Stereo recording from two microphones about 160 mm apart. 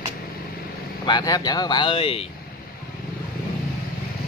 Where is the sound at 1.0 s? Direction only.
25° left (ahead or behind).